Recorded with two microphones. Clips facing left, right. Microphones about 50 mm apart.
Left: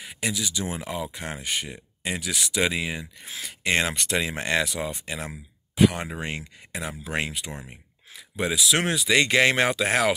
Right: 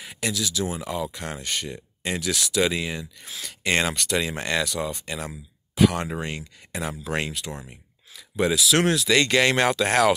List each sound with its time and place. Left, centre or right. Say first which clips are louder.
0.2 s speech: right 2 dB; centre
0.7 s speech: right 2 dB; left
3.9 s speech: right 1 dB; left
6.1 s speech: right 1 dB; left
8.4 s speech: right 3 dB; centre